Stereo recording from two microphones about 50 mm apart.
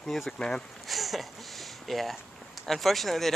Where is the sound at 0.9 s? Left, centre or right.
Centre.